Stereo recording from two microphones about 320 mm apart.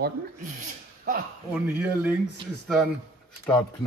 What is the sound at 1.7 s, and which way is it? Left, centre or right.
Speech, centre.